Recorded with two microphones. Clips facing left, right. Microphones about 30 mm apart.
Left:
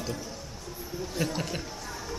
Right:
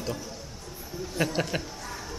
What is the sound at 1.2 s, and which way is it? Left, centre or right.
Speech, right.